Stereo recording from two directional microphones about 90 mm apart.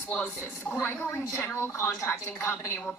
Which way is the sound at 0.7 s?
20° left (ahead or behind).